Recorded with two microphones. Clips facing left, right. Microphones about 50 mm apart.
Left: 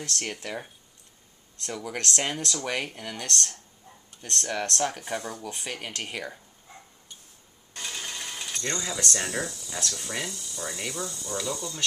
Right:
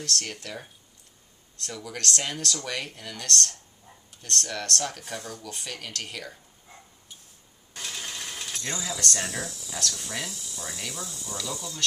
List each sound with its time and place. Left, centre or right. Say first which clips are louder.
0.0 s speech: even; centre
7.7 s sewing machine: left 1 dB; centre
9.9 s speech: left 1 dB; centre